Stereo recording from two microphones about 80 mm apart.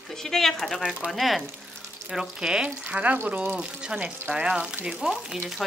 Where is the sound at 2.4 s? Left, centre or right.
Centre.